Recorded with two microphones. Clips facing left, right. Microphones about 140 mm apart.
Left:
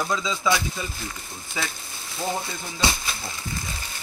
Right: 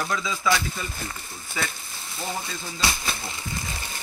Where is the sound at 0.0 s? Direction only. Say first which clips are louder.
Left 1 dB; 20° left (ahead or behind).